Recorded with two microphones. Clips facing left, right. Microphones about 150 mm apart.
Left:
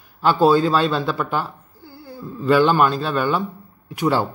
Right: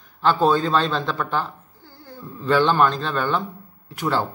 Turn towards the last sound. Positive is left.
turn(degrees=15)  # may be behind; listen again after turning